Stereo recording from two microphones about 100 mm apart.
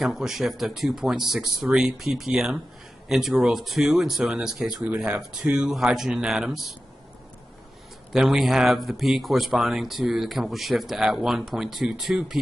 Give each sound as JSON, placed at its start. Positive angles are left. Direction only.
{"t": 0.0, "sound": "a man's voice", "side_deg": -5}
{"t": 8.1, "sound": "speech", "side_deg": -5}